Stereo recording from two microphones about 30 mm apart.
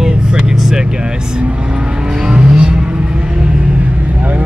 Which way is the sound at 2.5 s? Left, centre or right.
Right.